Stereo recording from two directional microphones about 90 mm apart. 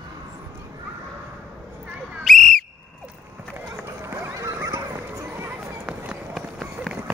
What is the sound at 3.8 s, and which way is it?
Neigh, 30° right (ahead or behind).